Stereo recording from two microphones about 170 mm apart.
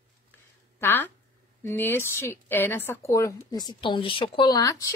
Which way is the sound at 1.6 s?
15° left (ahead or behind).